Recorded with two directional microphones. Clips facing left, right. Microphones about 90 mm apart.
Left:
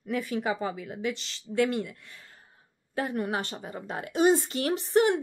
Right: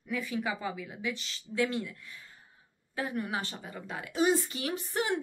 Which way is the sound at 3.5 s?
35° left (ahead or behind).